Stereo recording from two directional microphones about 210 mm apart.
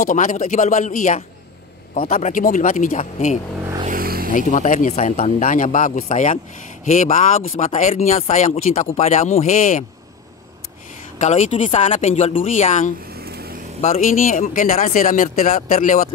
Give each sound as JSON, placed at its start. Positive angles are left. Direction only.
{"t": 0.0, "sound": "speech", "side_deg": 40}
{"t": 3.8, "sound": "vehicle", "side_deg": -45}
{"t": 4.3, "sound": "speech", "side_deg": 40}
{"t": 11.1, "sound": "speech", "side_deg": 35}
{"t": 13.1, "sound": "vehicle", "side_deg": -45}
{"t": 13.7, "sound": "speech", "side_deg": 35}